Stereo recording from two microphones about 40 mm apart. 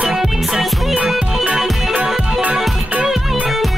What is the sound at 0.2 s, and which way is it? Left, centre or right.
Music, centre.